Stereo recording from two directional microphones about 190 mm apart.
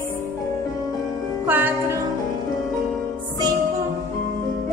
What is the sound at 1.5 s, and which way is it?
Music, 10° right (ahead or behind).